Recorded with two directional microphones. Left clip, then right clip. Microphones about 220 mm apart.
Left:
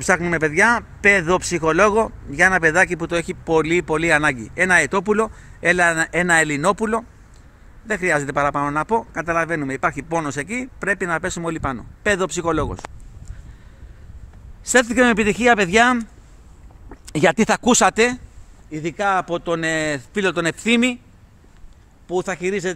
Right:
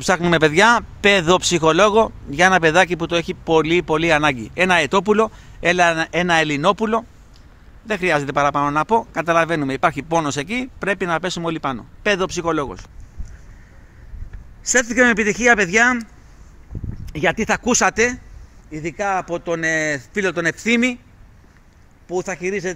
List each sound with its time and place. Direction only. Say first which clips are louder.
0.0 s speech: right 3 dB; 20° right (ahead or behind); by 12.8 s 5° left (ahead or behind)
14.7 s speech: even; 15° left (ahead or behind)
17.0 s speech: left 3 dB; 35° left (ahead or behind); by 21.0 s 5° left (ahead or behind)
22.0 s speech: left 1 dB; 15° left (ahead or behind)